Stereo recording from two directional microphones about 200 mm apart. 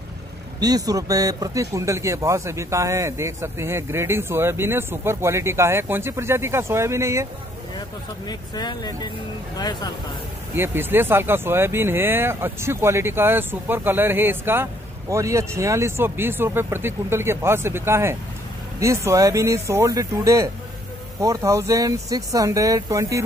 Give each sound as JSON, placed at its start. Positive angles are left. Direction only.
{"t": 0.6, "sound": "speech", "side_deg": -20}
{"t": 8.3, "sound": "speech", "side_deg": 20}
{"t": 10.5, "sound": "speech", "side_deg": -10}